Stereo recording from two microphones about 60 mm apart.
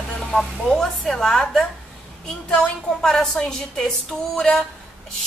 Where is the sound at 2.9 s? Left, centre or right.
Centre.